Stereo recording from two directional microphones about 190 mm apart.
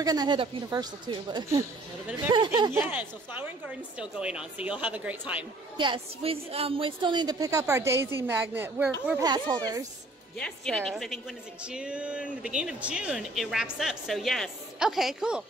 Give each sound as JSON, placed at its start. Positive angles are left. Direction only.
{"t": 0.0, "sound": "a woman's voice", "side_deg": -20}
{"t": 2.8, "sound": "a woman's voice", "side_deg": -10}
{"t": 5.8, "sound": "a woman's voice", "side_deg": -25}
{"t": 9.2, "sound": "a woman's voice", "side_deg": -20}
{"t": 10.3, "sound": "speech", "side_deg": 5}